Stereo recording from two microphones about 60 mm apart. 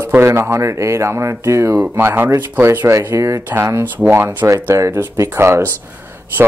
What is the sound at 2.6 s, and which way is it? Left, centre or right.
Speech, right.